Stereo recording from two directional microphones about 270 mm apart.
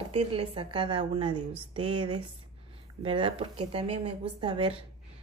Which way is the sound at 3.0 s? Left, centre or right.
Centre.